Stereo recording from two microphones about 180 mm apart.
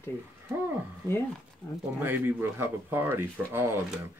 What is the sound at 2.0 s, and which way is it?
Speech, 10° right (ahead or behind).